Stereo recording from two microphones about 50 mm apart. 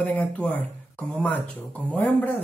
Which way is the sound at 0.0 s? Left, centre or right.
Left.